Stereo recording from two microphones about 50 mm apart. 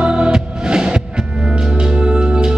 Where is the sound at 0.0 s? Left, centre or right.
Centre.